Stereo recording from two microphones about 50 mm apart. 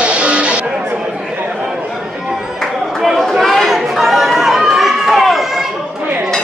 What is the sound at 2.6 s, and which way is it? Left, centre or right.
Chatter, centre.